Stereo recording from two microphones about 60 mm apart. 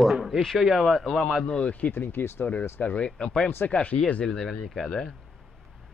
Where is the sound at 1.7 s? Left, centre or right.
Left.